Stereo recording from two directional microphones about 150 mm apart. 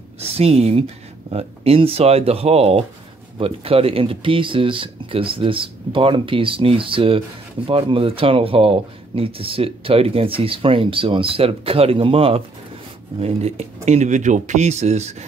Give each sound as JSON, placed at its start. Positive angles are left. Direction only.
{"t": 0.2, "sound": "speech", "side_deg": -40}